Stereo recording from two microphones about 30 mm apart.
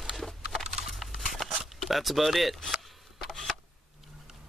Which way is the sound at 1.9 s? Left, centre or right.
Centre.